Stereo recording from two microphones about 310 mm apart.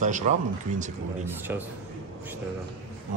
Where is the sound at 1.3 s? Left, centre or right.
Centre.